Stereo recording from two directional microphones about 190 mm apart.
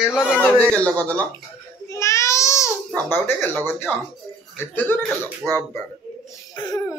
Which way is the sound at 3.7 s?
10° left (ahead or behind).